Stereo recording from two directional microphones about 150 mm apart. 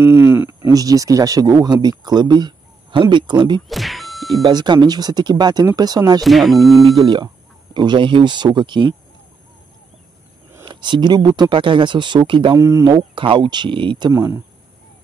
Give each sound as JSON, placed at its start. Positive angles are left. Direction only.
{"t": 0.0, "sound": "a sound", "side_deg": -15}
{"t": 0.7, "sound": "speech", "side_deg": -25}
{"t": 3.6, "sound": "speech", "side_deg": 0}
{"t": 4.4, "sound": "speech", "side_deg": -30}
{"t": 6.2, "sound": "speech", "side_deg": 0}
{"t": 7.0, "sound": "speech", "side_deg": -30}
{"t": 10.6, "sound": "speech", "side_deg": -30}
{"t": 12.5, "sound": "speech", "side_deg": -20}
{"t": 14.1, "sound": "speech", "side_deg": -20}